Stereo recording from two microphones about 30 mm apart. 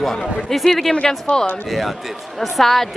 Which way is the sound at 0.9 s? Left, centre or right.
Left.